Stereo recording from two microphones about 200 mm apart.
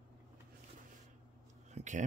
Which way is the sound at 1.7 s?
35° right (ahead or behind).